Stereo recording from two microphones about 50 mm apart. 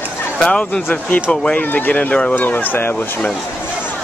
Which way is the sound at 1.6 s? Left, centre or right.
Left.